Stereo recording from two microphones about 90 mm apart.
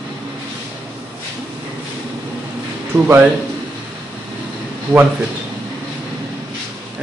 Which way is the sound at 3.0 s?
20° right (ahead or behind).